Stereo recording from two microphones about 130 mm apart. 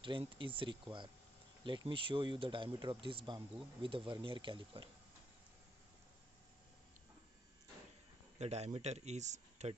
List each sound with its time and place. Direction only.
0.0 s speech: 40° right (ahead or behind)
8.4 s speech: 55° right (ahead or behind)